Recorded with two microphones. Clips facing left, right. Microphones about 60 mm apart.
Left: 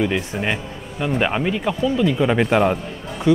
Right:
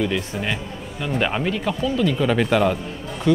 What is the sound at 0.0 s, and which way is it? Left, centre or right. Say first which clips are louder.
Speech: left 2 dB; centre.